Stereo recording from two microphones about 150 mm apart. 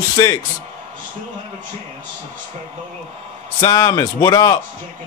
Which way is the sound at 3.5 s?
20° left (ahead or behind).